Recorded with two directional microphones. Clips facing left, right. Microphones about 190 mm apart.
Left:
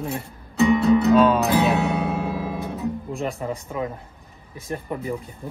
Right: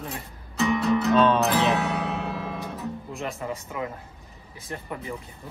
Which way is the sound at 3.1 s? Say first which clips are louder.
Left 4 dB; 35° left (ahead or behind).